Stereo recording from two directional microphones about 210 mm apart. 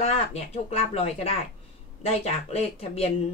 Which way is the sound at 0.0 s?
30° left (ahead or behind).